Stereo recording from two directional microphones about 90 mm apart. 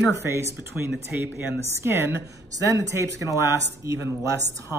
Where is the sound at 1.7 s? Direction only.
30° right (ahead or behind).